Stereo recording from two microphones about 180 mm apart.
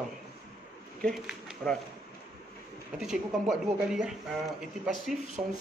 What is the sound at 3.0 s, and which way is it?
A woman's voice, centre (ahead or behind).